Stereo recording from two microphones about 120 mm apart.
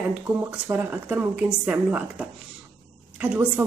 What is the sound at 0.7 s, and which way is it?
Speech, 15° right (ahead or behind).